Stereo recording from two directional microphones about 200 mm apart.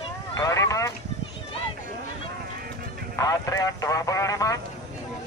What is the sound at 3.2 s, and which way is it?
Speech, 15° left (ahead or behind).